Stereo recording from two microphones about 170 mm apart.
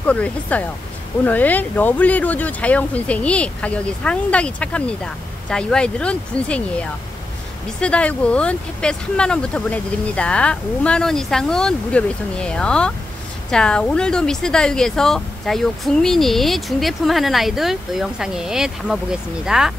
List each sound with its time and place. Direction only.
0.0 s speech: 10° left (ahead or behind)